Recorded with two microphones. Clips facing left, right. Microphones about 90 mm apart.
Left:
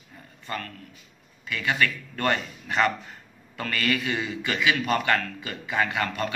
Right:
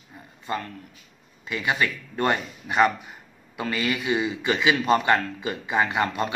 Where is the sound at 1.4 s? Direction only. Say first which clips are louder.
Right 1 dB; 20° right (ahead or behind).